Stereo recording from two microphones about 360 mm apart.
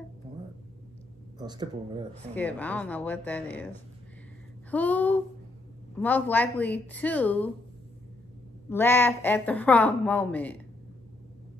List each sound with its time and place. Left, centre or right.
1.4 s speech: centre
2.3 s a woman's voice: centre
4.6 s a woman's voice: centre
8.6 s a woman's voice: centre